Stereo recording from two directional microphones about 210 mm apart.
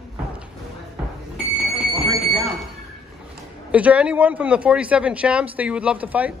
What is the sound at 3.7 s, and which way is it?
Speech, 5° right (ahead or behind).